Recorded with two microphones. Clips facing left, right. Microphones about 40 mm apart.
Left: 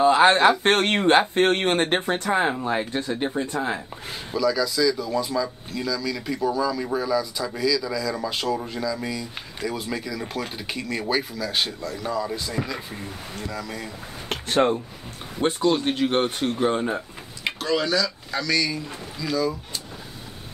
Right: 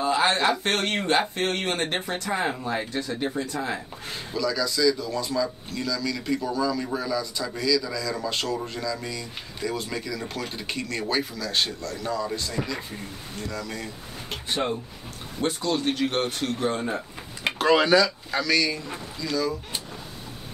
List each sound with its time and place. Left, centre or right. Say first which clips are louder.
0.0 s a sound: left 6 dB; left
0.7 s speech: left 6 dB; left
3.7 s speech: left 1 dB; centre
15.6 s speech: left 4 dB; centre
17.6 s speech: right 5 dB; right
18.3 s speech: left 3 dB; centre